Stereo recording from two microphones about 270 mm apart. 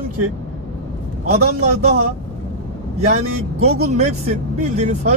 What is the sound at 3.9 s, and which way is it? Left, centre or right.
Speech, right.